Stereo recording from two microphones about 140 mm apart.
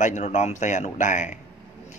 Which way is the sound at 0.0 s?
55° left (ahead or behind).